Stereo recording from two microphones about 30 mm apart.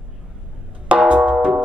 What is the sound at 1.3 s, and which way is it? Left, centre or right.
Music, right.